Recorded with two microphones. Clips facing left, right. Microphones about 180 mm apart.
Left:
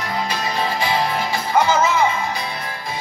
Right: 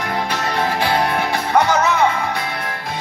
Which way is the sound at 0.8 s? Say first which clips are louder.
Right 3 dB; 60° right (ahead or behind).